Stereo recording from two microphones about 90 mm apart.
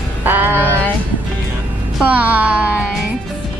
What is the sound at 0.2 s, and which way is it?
Music, 20° right (ahead or behind).